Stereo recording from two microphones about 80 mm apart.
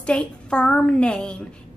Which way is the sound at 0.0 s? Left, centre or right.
Centre.